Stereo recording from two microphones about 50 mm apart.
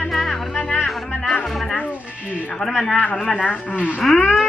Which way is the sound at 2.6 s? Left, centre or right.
Centre.